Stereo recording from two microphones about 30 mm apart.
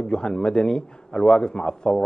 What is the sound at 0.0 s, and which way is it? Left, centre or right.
Speech, left.